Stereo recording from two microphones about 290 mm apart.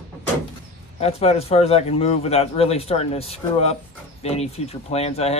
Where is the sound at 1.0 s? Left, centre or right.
Left.